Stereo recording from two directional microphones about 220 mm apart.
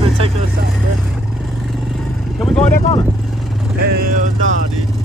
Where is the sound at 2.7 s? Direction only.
30° left (ahead or behind).